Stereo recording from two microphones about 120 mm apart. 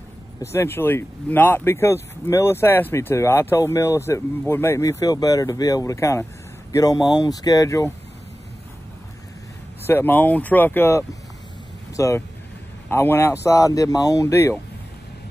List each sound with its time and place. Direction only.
0.4 s speech: 20° left (ahead or behind)
9.8 s speech: 20° left (ahead or behind)